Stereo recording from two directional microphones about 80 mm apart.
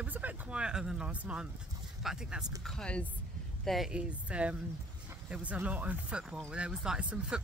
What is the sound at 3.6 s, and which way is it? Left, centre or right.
Speech, centre.